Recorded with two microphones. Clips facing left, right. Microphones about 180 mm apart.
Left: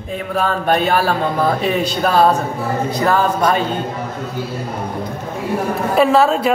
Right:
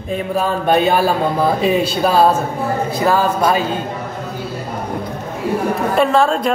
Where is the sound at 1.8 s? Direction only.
5° right (ahead or behind).